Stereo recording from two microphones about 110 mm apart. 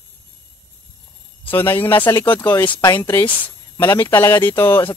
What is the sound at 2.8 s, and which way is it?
Speech, 25° left (ahead or behind).